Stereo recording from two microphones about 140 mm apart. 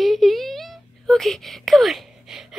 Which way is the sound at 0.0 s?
Centre (ahead or behind).